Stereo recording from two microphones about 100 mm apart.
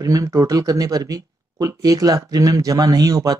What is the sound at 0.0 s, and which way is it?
Speech, 35° right (ahead or behind).